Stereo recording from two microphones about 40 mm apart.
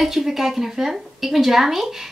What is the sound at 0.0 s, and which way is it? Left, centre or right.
A woman's voice, centre.